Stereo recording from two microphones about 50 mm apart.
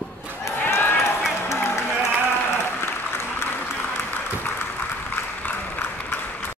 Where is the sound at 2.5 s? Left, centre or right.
Left.